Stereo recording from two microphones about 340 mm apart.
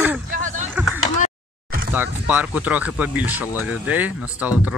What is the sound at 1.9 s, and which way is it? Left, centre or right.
Speech, centre.